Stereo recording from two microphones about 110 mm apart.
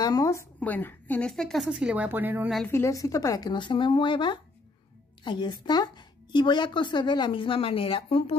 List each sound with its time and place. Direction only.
0.0 s a sound: 35° left (ahead or behind)
0.6 s a woman's voice: 15° left (ahead or behind)
1.3 s a woman's voice: 5° left (ahead or behind); by 2.5 s 15° right (ahead or behind)
2.7 s speech: 25° left (ahead or behind); by 8.4 s 60° left (ahead or behind)